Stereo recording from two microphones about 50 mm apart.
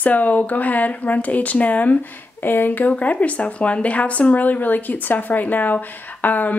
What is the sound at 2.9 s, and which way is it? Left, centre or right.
Speech, left.